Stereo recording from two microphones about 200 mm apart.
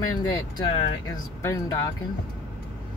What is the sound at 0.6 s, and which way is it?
Speech, 25° left (ahead or behind).